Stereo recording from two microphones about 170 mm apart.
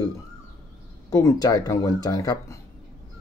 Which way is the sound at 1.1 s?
20° left (ahead or behind).